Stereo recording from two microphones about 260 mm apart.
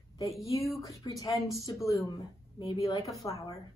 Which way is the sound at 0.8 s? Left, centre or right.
Centre.